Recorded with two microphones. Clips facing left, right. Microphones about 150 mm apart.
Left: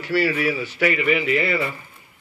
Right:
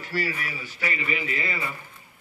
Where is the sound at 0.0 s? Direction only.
80° left.